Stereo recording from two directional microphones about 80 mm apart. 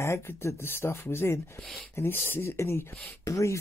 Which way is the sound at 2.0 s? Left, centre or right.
Left.